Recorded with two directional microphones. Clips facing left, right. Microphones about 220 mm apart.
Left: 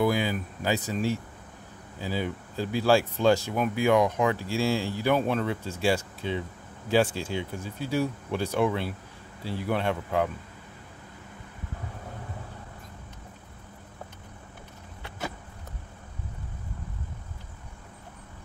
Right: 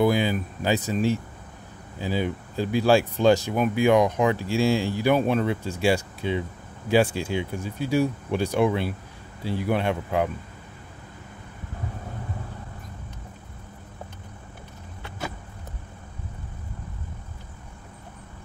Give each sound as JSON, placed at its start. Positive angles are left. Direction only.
{"t": 0.0, "sound": "speech", "side_deg": -25}